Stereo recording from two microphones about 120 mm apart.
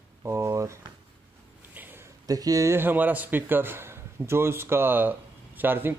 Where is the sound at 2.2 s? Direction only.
30° right (ahead or behind).